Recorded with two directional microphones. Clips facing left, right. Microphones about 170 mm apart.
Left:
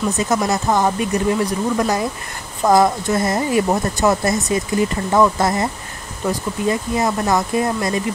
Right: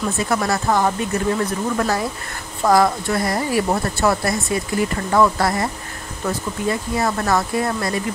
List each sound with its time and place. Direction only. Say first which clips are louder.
0.1 s speech: left 2 dB; 20° left (ahead or behind)